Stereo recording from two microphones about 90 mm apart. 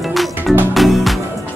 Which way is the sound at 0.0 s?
Centre (ahead or behind).